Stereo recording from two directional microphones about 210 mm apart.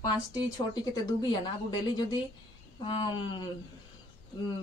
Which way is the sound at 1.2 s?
20° left (ahead or behind).